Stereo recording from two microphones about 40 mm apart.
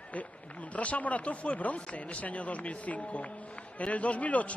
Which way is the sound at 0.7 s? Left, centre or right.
Left.